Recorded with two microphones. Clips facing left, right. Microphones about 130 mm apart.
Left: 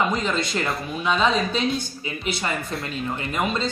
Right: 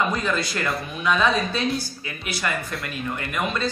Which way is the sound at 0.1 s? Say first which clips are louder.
Left 1 dB; 20° left (ahead or behind).